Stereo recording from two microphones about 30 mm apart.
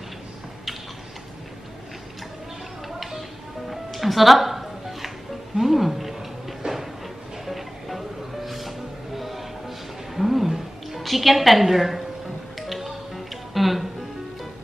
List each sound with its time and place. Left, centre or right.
3.0 s music: centre
5.6 s speech: centre
6.6 s a sound: right
7.4 s music: centre
11.0 s a woman's voice: centre
12.5 s music: centre